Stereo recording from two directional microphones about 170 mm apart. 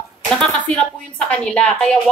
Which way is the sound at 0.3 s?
5° left (ahead or behind).